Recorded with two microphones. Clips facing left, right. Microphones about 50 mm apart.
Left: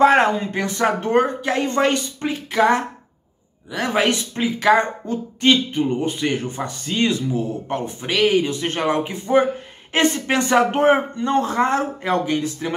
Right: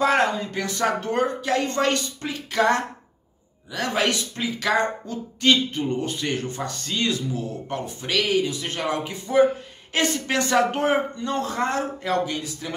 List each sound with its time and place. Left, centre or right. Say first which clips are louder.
0.0 s speech: left 6 dB; left